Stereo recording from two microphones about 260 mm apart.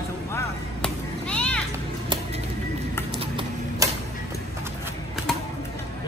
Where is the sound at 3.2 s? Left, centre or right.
Centre.